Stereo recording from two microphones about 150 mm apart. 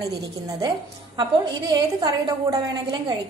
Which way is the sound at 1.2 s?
30° right (ahead or behind).